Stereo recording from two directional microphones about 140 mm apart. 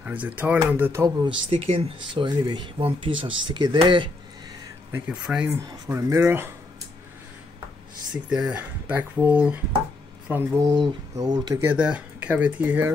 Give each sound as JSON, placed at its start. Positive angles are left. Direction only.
{"t": 0.0, "sound": "speech", "side_deg": -10}
{"t": 1.0, "sound": "speech", "side_deg": -35}
{"t": 4.9, "sound": "speech", "side_deg": -10}
{"t": 5.5, "sound": "speech", "side_deg": -20}
{"t": 8.1, "sound": "speech", "side_deg": -5}
{"t": 10.6, "sound": "speech", "side_deg": -25}
{"t": 11.6, "sound": "speech", "side_deg": -10}